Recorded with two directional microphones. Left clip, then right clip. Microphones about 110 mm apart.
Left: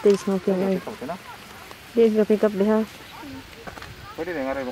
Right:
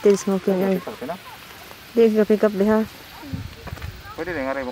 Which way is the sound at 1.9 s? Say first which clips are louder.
Right 2 dB; 20° right (ahead or behind).